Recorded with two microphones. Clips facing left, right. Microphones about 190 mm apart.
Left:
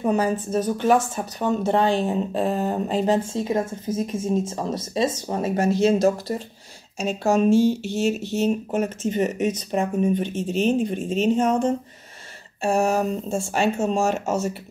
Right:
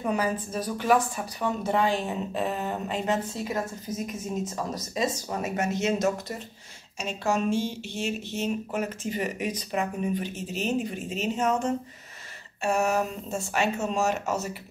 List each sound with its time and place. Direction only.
0.1 s speech: 30° left (ahead or behind)
1.7 s speech: 30° left (ahead or behind)